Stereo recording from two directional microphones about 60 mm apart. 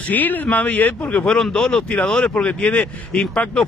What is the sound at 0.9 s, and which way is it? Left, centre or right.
Speech, centre.